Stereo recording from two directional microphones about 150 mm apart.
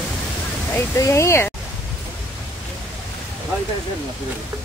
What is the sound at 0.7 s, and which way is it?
Speech, 20° left (ahead or behind).